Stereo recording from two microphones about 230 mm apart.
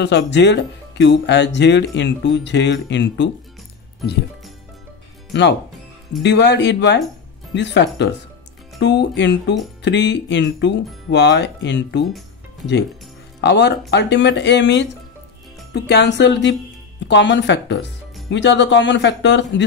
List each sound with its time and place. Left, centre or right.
0.0 s speech: left
5.3 s speech: left
13.4 s speech: left